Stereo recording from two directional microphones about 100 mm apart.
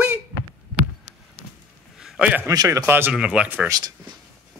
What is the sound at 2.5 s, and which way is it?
Speech, 35° right (ahead or behind).